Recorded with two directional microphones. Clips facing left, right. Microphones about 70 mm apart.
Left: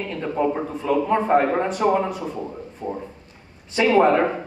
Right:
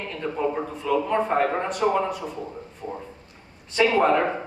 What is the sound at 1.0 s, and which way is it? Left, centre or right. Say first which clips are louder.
Speech: left 6 dB; centre.